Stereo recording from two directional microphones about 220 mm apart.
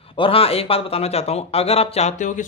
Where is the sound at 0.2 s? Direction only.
25° left (ahead or behind).